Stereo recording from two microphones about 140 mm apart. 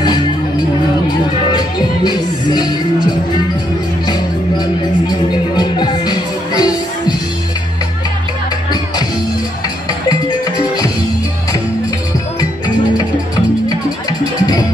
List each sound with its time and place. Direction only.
0.0 s music: 30° left (ahead or behind)
10.0 s music: 25° left (ahead or behind)
14.4 s music: 30° left (ahead or behind)